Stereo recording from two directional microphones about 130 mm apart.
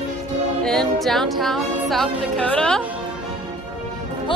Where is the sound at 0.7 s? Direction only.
Centre (ahead or behind).